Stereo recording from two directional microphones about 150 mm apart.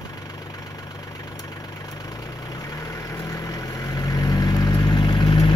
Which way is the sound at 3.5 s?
25° left (ahead or behind).